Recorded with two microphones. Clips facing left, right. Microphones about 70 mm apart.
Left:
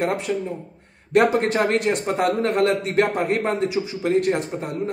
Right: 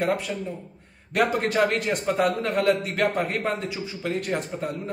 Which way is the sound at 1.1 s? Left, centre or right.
Left.